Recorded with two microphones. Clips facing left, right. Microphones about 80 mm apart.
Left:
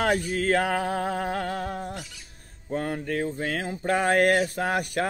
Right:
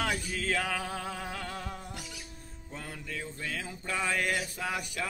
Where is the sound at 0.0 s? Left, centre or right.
Left.